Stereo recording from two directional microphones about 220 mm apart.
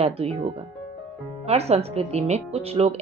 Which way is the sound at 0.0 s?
30° right (ahead or behind).